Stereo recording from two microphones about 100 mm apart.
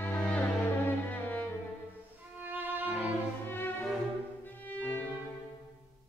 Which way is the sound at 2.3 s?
20° right (ahead or behind).